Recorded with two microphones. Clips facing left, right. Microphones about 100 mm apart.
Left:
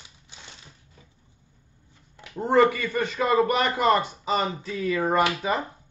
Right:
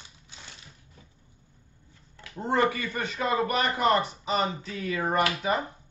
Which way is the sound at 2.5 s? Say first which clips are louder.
Left 6 dB; 25° right (ahead or behind).